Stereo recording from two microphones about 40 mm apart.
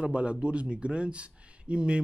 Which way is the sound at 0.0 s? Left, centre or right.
Right.